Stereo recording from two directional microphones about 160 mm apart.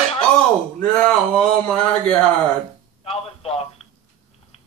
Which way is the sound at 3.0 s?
40° left (ahead or behind).